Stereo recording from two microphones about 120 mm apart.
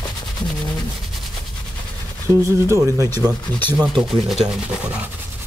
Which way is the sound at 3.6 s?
15° left (ahead or behind).